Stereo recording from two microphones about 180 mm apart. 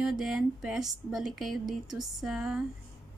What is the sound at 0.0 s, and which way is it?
Speech, centre (ahead or behind).